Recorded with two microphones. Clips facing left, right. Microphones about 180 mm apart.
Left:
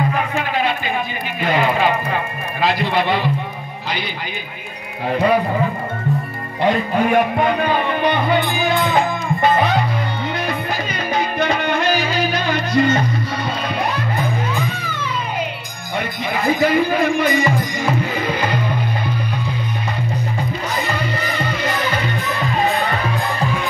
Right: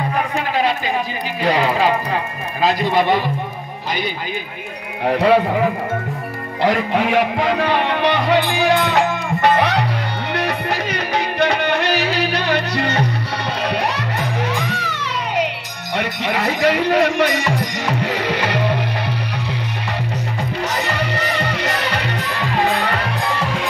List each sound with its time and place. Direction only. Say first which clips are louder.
1.4 s music: right 1 dB; 35° right (ahead or behind)
2.6 s speech: right 2 dB; 40° right (ahead or behind)
5.0 s speech: right 2 dB; 75° right (ahead or behind)
6.6 s speech: even; 85° right
10.3 s music: right 2 dB; 70° right (ahead or behind)
16.0 s speech: right 1 dB; 75° right (ahead or behind)
20.7 s music: left 1 dB; 75° right (ahead or behind)